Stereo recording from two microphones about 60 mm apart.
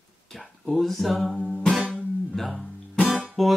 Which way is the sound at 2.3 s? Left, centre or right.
Centre.